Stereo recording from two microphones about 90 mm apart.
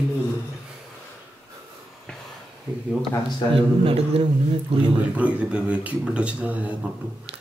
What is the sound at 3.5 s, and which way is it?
Speech, 90° right.